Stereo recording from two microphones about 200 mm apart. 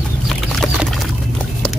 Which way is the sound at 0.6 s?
Centre (ahead or behind).